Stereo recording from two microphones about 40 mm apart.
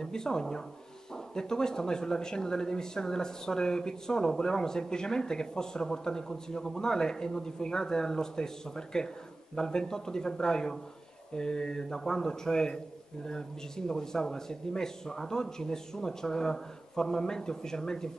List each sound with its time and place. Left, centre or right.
0.0 s speech: centre